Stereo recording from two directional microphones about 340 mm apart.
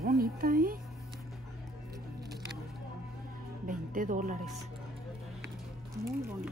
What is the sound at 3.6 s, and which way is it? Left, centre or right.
Music, right.